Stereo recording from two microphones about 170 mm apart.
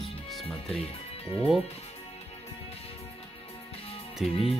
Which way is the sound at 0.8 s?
35° left (ahead or behind).